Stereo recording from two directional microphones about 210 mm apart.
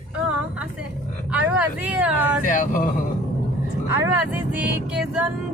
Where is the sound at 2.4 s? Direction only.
40° left (ahead or behind).